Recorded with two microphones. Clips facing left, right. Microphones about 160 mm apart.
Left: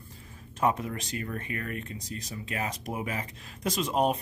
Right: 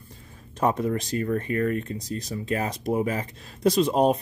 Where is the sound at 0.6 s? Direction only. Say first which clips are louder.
Right 4 dB; 35° right (ahead or behind).